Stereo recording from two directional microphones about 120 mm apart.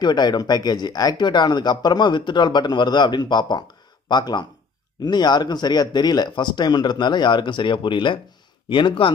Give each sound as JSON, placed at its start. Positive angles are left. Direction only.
{"t": 0.0, "sound": "speech", "side_deg": 35}